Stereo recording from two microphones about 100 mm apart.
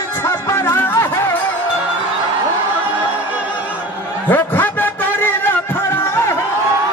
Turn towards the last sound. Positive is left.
turn(degrees=20)  # may be behind; listen again after turning